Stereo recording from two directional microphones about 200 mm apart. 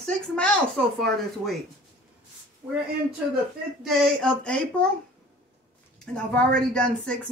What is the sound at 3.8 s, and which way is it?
Speech, centre (ahead or behind).